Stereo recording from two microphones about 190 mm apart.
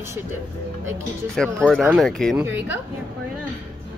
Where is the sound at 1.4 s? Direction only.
Centre (ahead or behind).